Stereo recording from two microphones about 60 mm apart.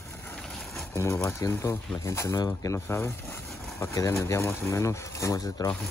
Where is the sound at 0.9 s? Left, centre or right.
Left.